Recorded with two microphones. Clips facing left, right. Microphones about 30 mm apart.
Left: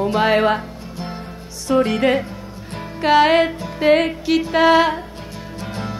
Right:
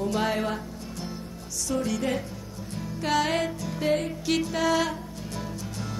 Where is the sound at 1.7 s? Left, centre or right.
Left.